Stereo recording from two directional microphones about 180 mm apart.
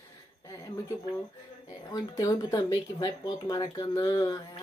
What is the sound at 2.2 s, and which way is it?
Speech, 20° left (ahead or behind).